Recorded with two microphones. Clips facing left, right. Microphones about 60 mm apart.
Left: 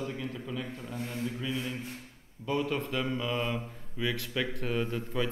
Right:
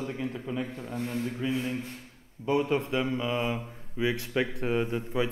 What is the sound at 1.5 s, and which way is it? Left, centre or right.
A man's voice, right.